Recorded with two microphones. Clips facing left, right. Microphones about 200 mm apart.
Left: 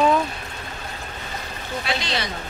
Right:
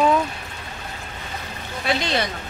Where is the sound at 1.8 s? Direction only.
55° right (ahead or behind).